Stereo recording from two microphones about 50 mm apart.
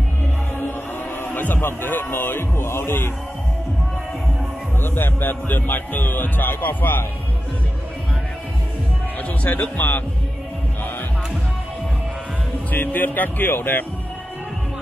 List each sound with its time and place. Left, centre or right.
1.2 s a man's voice: left
4.8 s a man's voice: left
9.4 s speech: left
12.7 s a man's voice: left